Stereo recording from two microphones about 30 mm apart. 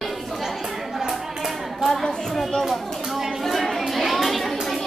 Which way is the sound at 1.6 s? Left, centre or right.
Centre.